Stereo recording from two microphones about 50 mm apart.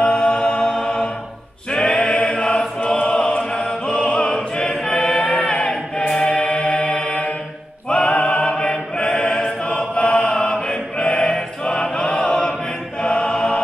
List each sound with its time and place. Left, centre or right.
0.0 s music: left
1.7 s a sound: centre
2.1 s chant: left
2.9 s choir: centre
6.2 s mantra: centre
7.9 s choir: left